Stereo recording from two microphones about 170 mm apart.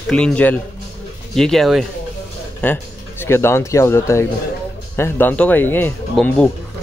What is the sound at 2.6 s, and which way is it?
Speech, 10° left (ahead or behind).